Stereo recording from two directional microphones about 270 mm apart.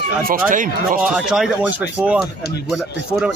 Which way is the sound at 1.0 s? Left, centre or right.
Centre.